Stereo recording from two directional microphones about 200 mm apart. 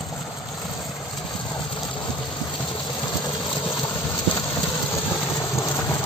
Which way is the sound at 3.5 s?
10° left (ahead or behind).